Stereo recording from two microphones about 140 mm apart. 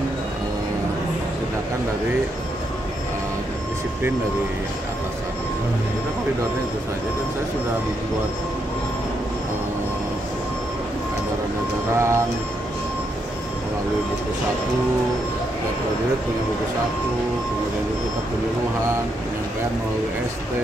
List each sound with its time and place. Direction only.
11.9 s speech: 20° right (ahead or behind)